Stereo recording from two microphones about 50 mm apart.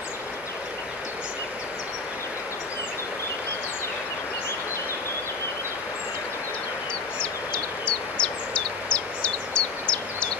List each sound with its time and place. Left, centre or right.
7.2 s bird: left